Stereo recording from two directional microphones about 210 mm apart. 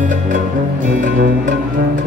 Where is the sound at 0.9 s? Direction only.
40° right (ahead or behind).